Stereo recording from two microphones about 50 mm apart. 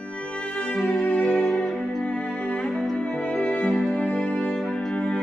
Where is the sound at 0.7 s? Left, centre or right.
Left.